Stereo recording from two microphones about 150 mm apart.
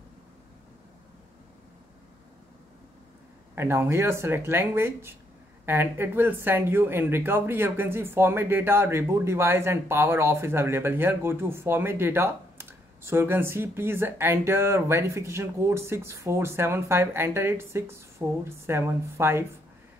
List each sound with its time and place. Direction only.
3.5 s speech: 15° right (ahead or behind)